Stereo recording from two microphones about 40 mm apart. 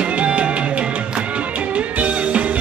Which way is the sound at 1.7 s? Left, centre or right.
Right.